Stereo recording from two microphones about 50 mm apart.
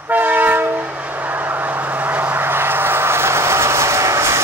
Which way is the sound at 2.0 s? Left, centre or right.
Right.